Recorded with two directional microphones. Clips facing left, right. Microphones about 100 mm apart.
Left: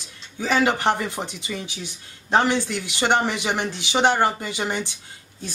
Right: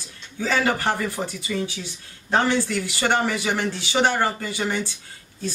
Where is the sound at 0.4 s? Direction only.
20° left (ahead or behind).